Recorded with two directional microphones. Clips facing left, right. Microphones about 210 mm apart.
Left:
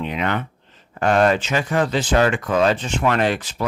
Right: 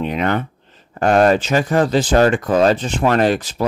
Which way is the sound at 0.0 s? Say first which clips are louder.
Right 4 dB; 40° right (ahead or behind).